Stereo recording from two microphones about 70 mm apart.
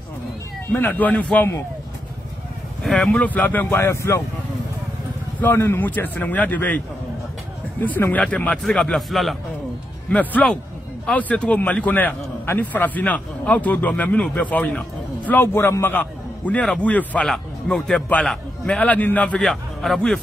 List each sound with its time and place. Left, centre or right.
0.7 s a man's voice: left
3.0 s a man's voice: centre
3.7 s a man's voice: left
5.4 s a man's voice: left
5.9 s a man's voice: left
7.8 s a man's voice: left; by 9.4 s centre
10.0 s a man's voice: left
15.3 s a man's voice: left
15.9 s a sound: left
16.8 s a man's voice: centre
17.3 s a man's voice: centre
18.8 s a man's voice: left
19.4 s a man's voice: centre